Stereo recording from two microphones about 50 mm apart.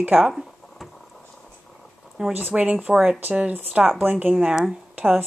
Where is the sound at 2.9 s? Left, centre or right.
Centre.